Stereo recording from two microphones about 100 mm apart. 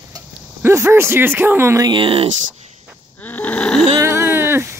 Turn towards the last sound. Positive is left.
turn(degrees=-25)  # may be behind; listen again after turning